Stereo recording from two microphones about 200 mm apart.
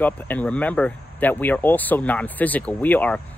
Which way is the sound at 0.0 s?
10° left (ahead or behind).